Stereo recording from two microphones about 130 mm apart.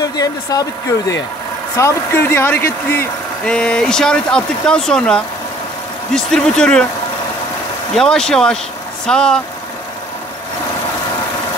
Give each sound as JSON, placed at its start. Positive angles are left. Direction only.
{"t": 0.0, "sound": "speech", "side_deg": 30}
{"t": 3.4, "sound": "speech", "side_deg": 10}
{"t": 7.9, "sound": "speech", "side_deg": 5}